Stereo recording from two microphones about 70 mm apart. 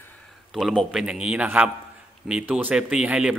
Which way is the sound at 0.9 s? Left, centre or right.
Centre.